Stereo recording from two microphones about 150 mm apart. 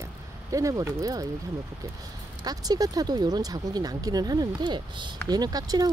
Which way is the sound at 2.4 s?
25° right (ahead or behind).